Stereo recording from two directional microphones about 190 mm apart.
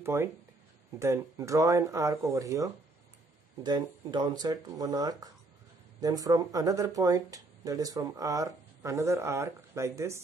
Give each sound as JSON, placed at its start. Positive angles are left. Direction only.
{"t": 0.0, "sound": "speech", "side_deg": -15}